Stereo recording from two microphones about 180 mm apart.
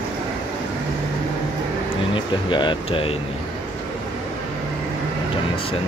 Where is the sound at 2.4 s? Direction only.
25° left (ahead or behind).